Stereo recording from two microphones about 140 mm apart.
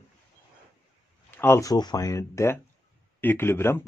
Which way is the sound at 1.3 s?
15° left (ahead or behind).